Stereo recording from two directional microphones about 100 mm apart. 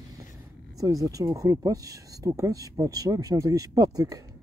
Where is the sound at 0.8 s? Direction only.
35° right (ahead or behind).